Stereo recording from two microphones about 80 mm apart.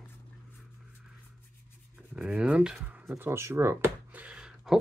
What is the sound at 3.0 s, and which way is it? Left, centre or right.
Speech, right.